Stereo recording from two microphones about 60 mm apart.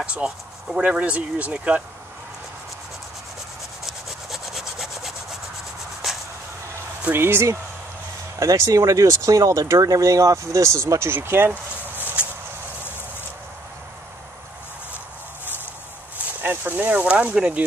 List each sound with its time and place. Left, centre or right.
0.0 s speech: centre
3.8 s sawing: centre
6.0 s a sound: centre
7.2 s speech: right
8.4 s speech: right
12.2 s a sound: right
16.4 s speech: right